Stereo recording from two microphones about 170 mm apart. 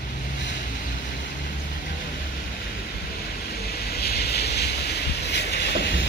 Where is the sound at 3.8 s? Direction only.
70° left (ahead or behind); by 5.6 s 85° left.